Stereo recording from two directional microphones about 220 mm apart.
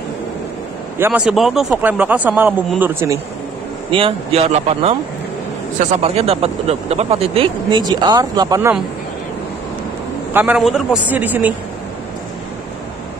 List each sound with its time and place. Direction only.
0.9 s speech: 10° right (ahead or behind)
3.9 s speech: 25° right (ahead or behind); by 8.8 s 10° right (ahead or behind)
10.3 s speech: 5° right (ahead or behind)